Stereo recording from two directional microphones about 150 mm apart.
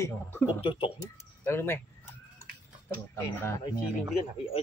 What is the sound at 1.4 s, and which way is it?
Speech, 15° left (ahead or behind).